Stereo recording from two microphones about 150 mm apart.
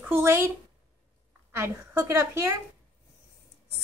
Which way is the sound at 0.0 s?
15° right (ahead or behind).